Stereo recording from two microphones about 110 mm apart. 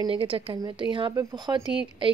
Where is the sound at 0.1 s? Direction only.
55° right (ahead or behind).